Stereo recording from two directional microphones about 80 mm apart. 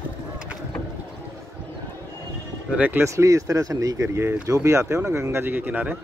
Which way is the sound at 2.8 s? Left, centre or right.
Right.